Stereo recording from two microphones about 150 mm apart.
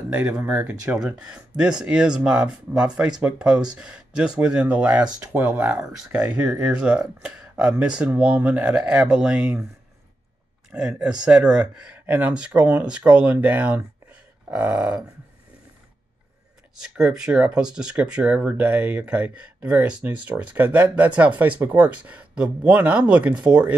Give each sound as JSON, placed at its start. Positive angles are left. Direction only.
{"t": 0.1, "sound": "speech", "side_deg": -10}
{"t": 6.0, "sound": "speech", "side_deg": -20}
{"t": 6.6, "sound": "speech", "side_deg": -5}
{"t": 10.7, "sound": "speech", "side_deg": -5}
{"t": 16.8, "sound": "speech", "side_deg": -5}